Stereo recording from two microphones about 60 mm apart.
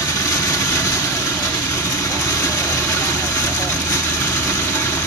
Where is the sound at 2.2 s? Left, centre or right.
Left.